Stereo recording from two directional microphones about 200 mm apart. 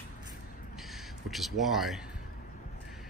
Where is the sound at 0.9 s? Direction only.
Centre (ahead or behind).